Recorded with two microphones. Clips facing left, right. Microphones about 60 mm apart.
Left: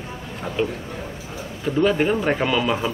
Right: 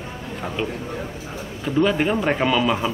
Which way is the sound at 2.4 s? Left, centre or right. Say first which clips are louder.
Right 1 dB; centre.